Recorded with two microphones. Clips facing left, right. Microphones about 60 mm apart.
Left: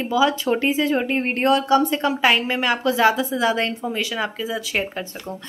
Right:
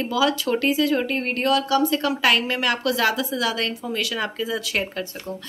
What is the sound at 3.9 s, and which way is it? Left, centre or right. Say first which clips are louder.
Speech: left 1 dB; centre.